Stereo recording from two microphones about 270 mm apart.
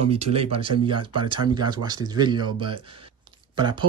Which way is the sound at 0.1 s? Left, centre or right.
Right.